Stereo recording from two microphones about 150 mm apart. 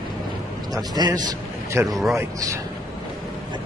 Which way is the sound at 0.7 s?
25° right (ahead or behind).